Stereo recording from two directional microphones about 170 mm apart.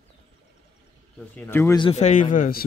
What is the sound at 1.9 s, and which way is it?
Speech, 45° left (ahead or behind).